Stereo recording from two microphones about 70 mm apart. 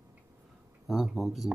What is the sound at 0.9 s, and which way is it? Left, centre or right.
Speech, centre.